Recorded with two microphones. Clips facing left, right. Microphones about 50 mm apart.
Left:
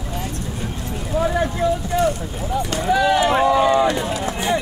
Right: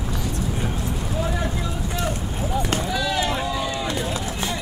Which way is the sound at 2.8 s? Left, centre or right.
Left.